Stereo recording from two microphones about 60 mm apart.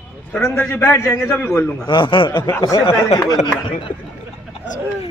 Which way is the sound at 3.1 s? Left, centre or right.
Left.